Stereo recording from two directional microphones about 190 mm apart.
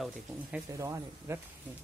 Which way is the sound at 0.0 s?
Centre (ahead or behind).